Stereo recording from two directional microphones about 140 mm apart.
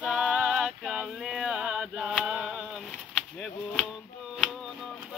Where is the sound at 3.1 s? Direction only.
10° left (ahead or behind).